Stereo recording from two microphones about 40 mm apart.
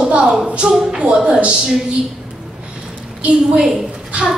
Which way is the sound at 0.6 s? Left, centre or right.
Right.